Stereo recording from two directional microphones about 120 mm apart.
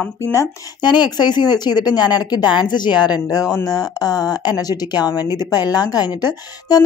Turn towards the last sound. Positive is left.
turn(degrees=35)  # may be behind; listen again after turning